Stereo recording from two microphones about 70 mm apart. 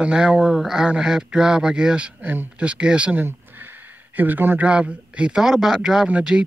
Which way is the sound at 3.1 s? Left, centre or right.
Right.